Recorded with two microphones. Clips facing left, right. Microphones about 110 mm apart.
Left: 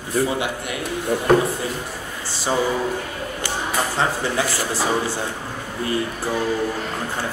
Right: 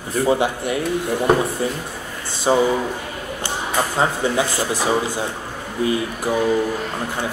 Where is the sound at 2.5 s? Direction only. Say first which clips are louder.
Right 5 dB; 25° right (ahead or behind).